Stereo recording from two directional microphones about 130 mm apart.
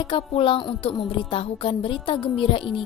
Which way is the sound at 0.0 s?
40° left (ahead or behind).